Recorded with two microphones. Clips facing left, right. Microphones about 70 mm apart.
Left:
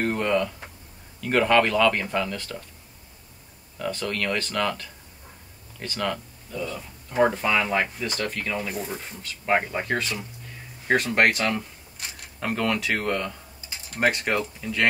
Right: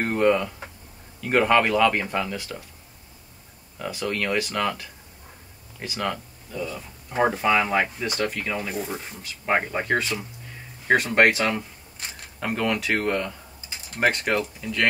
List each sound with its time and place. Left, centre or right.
0.0 s a sound: centre
1.2 s speech: centre
3.7 s speech: centre
7.1 s speech: centre
13.7 s a sound: centre
14.6 s speech: centre